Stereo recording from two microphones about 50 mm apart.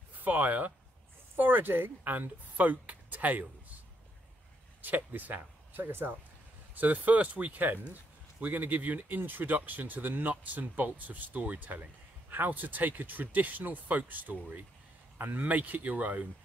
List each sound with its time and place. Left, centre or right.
0.2 s speech: right
4.8 s speech: right
6.7 s speech: right